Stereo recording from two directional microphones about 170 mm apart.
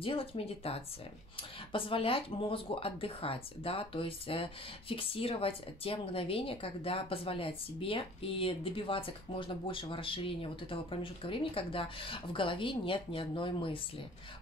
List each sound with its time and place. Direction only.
0.0 s speech: 30° left (ahead or behind)